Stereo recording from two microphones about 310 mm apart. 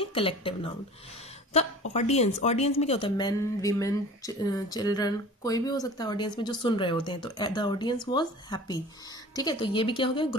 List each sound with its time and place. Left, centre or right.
0.0 s speech: centre
2.0 s speech: left